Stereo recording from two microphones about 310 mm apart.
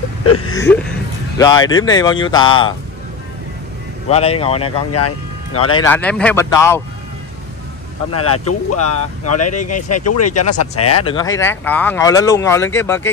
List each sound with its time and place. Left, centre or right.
0.2 s a sound: left
0.5 s a sound: centre
1.4 s speech: centre
4.1 s speech: centre
4.9 s speech: left
5.8 s speech: centre
8.1 s speech: left
11.1 s speech: centre